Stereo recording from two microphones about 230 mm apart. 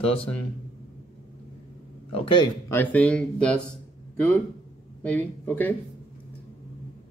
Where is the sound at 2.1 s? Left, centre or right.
Centre.